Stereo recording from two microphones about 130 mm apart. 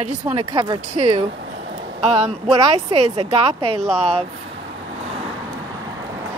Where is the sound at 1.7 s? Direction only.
60° right (ahead or behind).